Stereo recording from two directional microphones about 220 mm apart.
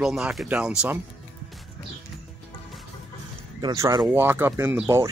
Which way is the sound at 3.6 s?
15° right (ahead or behind).